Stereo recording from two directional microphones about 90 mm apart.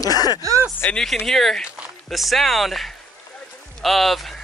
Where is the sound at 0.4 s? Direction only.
40° right (ahead or behind).